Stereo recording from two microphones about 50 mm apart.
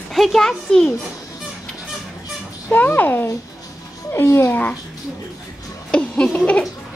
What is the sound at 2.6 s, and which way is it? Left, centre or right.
Speech, left.